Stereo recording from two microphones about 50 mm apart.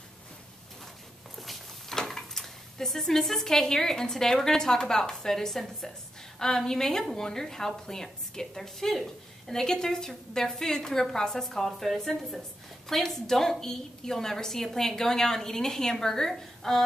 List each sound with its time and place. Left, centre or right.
1.3 s walk: centre
2.0 s a woman's voice: centre